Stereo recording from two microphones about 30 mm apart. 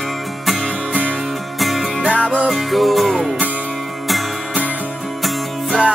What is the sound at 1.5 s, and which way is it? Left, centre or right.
Music, centre.